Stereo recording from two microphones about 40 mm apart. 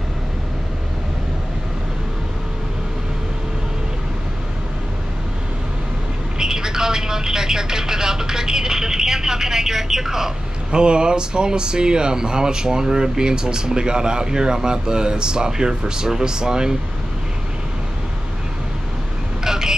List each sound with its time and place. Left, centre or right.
6.3 s speech: centre
10.7 s speech: right
19.4 s vehicle: centre